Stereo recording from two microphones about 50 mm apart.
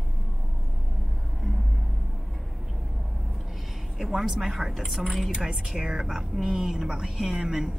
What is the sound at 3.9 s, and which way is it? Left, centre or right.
A woman's voice, centre.